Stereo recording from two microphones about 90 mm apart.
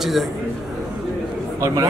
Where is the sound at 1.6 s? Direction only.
35° right (ahead or behind).